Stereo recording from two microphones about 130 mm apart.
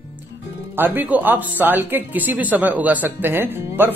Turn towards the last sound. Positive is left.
turn(degrees=-15)  # may be behind; listen again after turning